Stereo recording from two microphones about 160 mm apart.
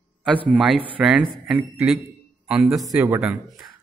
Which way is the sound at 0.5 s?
5° right (ahead or behind).